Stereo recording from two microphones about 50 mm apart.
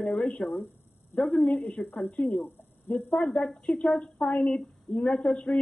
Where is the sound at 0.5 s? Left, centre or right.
Left.